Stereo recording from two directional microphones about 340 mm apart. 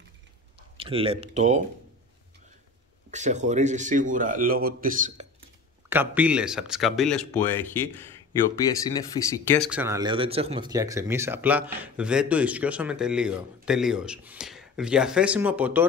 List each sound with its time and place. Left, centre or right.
0.7 s speech: centre
3.1 s speech: right
5.9 s speech: centre
9.5 s speech: centre